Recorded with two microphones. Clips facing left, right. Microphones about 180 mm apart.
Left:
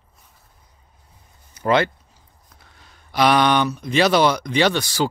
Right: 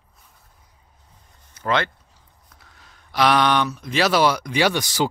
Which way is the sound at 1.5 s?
10° left (ahead or behind).